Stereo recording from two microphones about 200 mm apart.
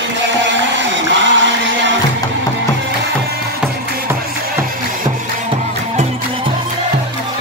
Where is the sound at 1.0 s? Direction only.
65° right (ahead or behind).